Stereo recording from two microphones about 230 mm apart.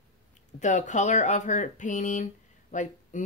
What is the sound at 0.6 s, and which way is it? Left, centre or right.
Speech, left.